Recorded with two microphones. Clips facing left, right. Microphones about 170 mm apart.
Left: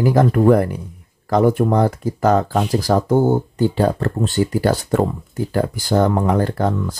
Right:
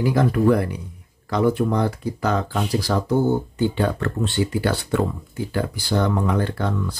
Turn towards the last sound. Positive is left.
turn(degrees=45)  # may be behind; listen again after turning